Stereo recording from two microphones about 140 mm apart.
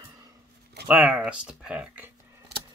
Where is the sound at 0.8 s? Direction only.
10° right (ahead or behind).